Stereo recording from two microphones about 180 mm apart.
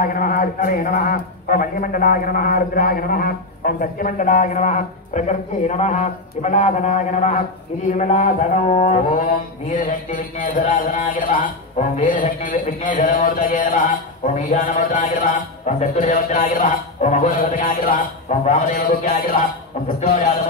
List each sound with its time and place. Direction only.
0.0 s mantra: 50° left (ahead or behind)